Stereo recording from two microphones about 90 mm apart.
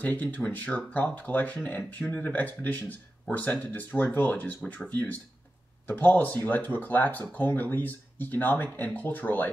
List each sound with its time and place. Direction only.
0.0 s speech: 20° left (ahead or behind)